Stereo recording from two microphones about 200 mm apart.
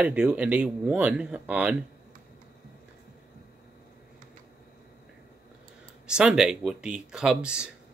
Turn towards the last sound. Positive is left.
turn(degrees=-5)  # may be behind; listen again after turning